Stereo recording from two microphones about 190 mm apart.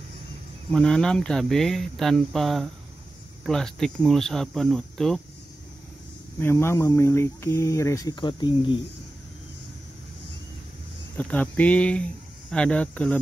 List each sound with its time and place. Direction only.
0.7 s speech: 5° left (ahead or behind)
6.4 s speech: 15° left (ahead or behind)
11.1 s speech: 10° left (ahead or behind)